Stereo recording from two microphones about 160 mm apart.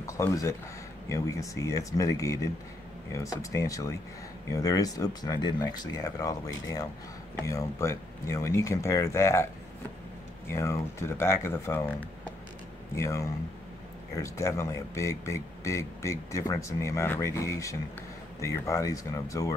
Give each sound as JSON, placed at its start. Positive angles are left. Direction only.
{"t": 0.0, "sound": "speech", "side_deg": 20}
{"t": 10.5, "sound": "speech", "side_deg": 15}